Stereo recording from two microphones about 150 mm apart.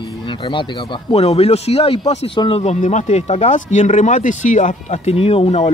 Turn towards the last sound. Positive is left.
turn(degrees=40)  # may be behind; listen again after turning